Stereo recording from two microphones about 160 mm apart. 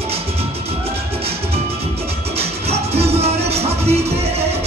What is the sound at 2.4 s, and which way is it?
Music, 40° right (ahead or behind).